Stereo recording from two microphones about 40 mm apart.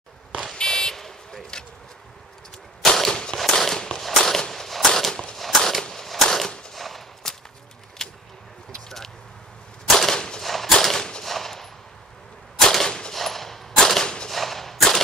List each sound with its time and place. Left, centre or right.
0.6 s buzzer: centre
3.0 s a sound: centre
3.3 s firecracker: centre
4.2 s a sound: centre
6.7 s gunshot: centre
8.0 s a sound: centre
9.9 s gunshot: centre
10.4 s a sound: centre
11.2 s gunshot: centre
12.7 s gunshot: centre
14.0 s whip: left
14.3 s whip: centre